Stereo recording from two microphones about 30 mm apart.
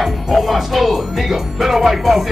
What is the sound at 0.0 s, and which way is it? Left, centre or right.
Speech, centre.